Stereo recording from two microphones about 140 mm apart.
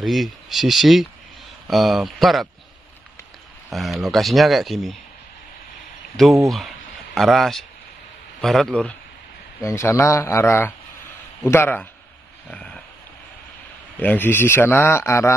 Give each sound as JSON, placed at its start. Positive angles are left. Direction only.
{"t": 0.0, "sound": "speech", "side_deg": 0}
{"t": 3.7, "sound": "speech", "side_deg": 0}
{"t": 6.4, "sound": "speech", "side_deg": 0}
{"t": 9.7, "sound": "a man's voice", "side_deg": 20}
{"t": 12.4, "sound": "a sound", "side_deg": 5}
{"t": 13.9, "sound": "a man's voice", "side_deg": 15}